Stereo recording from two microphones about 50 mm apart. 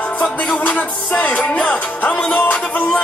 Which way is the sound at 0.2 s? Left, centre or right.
Left.